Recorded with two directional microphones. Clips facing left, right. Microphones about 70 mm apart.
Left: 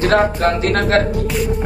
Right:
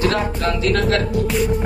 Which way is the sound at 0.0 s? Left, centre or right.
Left.